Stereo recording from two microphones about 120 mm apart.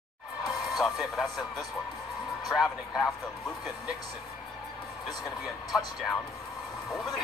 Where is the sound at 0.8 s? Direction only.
Centre (ahead or behind).